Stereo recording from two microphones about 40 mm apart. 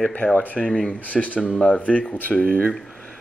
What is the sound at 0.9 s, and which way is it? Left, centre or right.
Speech, left.